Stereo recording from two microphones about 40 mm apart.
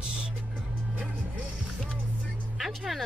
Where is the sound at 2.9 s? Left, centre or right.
Centre.